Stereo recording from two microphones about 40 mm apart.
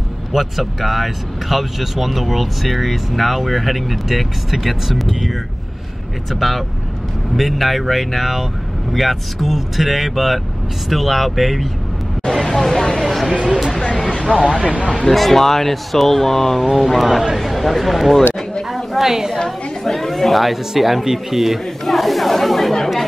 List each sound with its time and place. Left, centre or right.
0.3 s speech: centre
6.4 s speech: centre
12.3 s a sound: centre
13.0 s speech: centre
13.3 s speech: centre
15.0 s a woman's voice: centre
19.3 s speech: centre